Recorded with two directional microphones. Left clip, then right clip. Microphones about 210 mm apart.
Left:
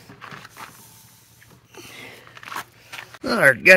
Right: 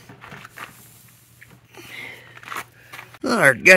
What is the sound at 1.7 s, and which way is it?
Biting, 5° left (ahead or behind).